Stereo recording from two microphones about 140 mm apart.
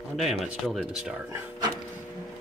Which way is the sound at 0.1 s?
Centre (ahead or behind).